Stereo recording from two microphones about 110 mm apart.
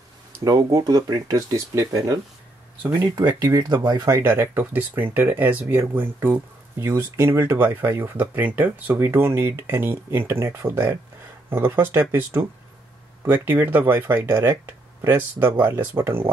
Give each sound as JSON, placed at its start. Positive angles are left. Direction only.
{"t": 0.4, "sound": "speech", "side_deg": -30}
{"t": 3.2, "sound": "speech", "side_deg": -40}
{"t": 4.2, "sound": "speech", "side_deg": -20}